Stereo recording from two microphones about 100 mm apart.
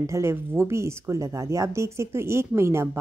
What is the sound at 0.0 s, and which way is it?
Speech, 30° right (ahead or behind).